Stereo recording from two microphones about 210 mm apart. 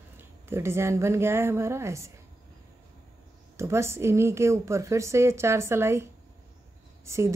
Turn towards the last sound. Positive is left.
turn(degrees=-15)  # may be behind; listen again after turning